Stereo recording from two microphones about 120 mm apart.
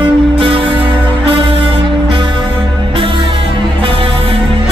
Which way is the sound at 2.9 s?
45° right (ahead or behind).